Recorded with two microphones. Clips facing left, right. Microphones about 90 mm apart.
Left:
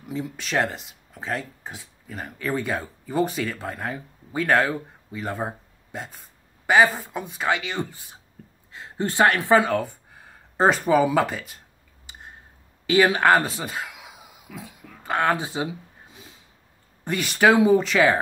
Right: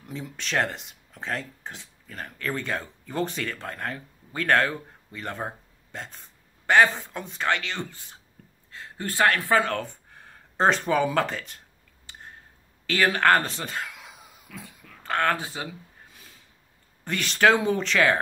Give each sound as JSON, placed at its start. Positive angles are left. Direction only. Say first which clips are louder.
{"t": 0.0, "sound": "speech", "louder": "left 5 dB", "side_deg": 5}
{"t": 8.7, "sound": "speech", "louder": "left 5 dB", "side_deg": 20}
{"t": 9.7, "sound": "speech", "louder": "left 5 dB", "side_deg": 5}
{"t": 12.1, "sound": "a sound", "louder": "left 1 dB", "side_deg": 15}
{"t": 17.0, "sound": "speech", "louder": "left 2 dB", "side_deg": 10}